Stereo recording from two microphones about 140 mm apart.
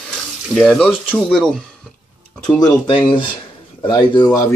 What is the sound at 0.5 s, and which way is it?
Speech, 5° left (ahead or behind).